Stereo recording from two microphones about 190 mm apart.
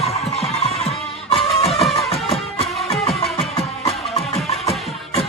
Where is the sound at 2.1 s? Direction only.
35° left (ahead or behind).